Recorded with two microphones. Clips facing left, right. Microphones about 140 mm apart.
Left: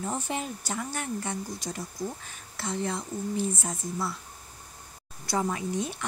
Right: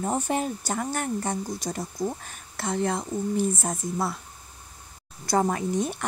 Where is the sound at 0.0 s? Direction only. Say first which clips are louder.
Right 6 dB; 45° right (ahead or behind).